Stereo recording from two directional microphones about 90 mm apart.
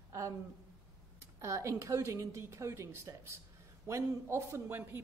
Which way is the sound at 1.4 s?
35° right (ahead or behind).